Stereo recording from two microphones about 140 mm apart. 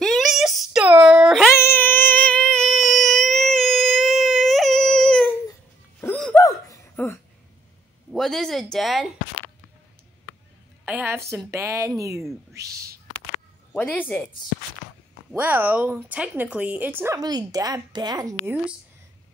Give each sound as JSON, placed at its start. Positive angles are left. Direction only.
{"t": 0.0, "sound": "a sound", "side_deg": 0}
{"t": 1.5, "sound": "a sound", "side_deg": 15}
{"t": 6.4, "sound": "laughter", "side_deg": 25}
{"t": 8.1, "sound": "speech", "side_deg": 5}
{"t": 10.9, "sound": "a woman's voice", "side_deg": -10}
{"t": 13.7, "sound": "speech", "side_deg": 15}
{"t": 15.3, "sound": "speech", "side_deg": -10}
{"t": 17.2, "sound": "speech", "side_deg": -30}
{"t": 18.4, "sound": "speech", "side_deg": -15}